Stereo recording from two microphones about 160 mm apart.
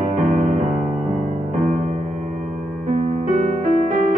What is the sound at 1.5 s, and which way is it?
Music, 50° right (ahead or behind).